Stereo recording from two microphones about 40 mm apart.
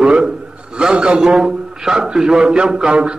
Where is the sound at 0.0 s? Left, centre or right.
Right.